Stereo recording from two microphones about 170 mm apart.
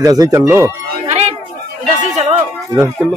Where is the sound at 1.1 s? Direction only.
35° right (ahead or behind).